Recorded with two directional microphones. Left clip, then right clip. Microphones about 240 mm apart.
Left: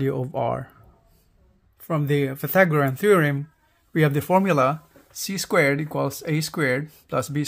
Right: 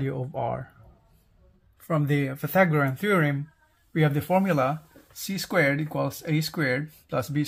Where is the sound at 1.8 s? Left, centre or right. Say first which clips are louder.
Left 3 dB; centre.